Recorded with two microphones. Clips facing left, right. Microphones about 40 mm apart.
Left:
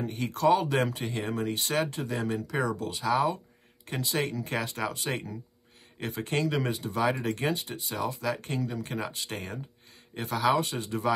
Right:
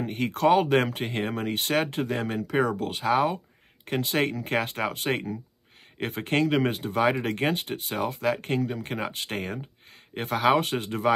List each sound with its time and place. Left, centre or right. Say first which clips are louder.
0.0 s speech: right 2 dB; right